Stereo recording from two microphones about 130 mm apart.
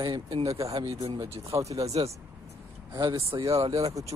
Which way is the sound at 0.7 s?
45° right (ahead or behind).